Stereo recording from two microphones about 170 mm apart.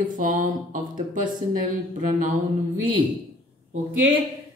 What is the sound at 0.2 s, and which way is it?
Speech, 50° right (ahead or behind).